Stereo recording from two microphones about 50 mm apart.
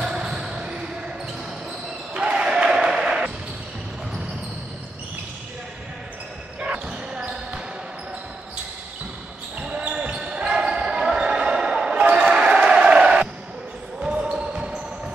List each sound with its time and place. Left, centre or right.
0.0 s basketball bounce: centre
2.1 s a sound: centre
6.6 s basketball bounce: centre
9.6 s basketball bounce: right
12.0 s basketball bounce: right